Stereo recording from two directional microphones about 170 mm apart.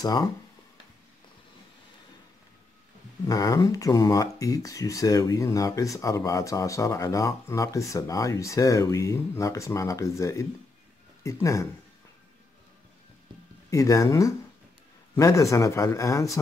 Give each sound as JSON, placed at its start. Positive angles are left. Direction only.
{"t": 0.0, "sound": "speech", "side_deg": 20}
{"t": 3.3, "sound": "speech", "side_deg": 20}
{"t": 13.7, "sound": "speech", "side_deg": 20}